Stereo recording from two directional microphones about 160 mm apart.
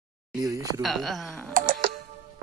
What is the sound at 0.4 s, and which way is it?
Speech, 20° right (ahead or behind).